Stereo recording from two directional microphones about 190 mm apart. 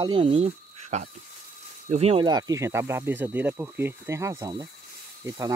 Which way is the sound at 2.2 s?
20° right (ahead or behind).